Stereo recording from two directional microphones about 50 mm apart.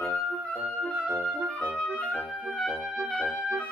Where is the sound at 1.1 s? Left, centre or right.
Centre.